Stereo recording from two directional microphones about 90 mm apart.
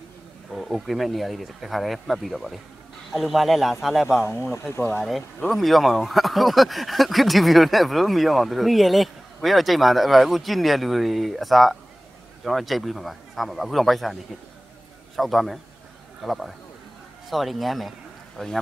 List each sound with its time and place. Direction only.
0.5 s speech: centre (ahead or behind)
4.1 s speech: 30° left (ahead or behind)
5.5 s speech: centre (ahead or behind)
15.1 s speech: centre (ahead or behind)
17.3 s speech: centre (ahead or behind)